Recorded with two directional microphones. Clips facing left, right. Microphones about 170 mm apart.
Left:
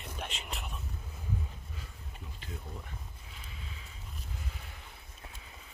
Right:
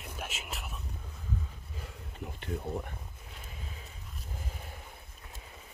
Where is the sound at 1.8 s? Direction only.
60° right (ahead or behind).